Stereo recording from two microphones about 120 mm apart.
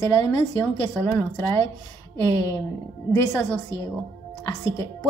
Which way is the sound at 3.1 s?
20° left (ahead or behind).